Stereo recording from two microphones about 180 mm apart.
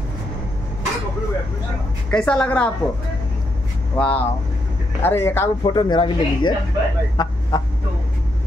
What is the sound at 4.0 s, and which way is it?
Speech, 5° left (ahead or behind).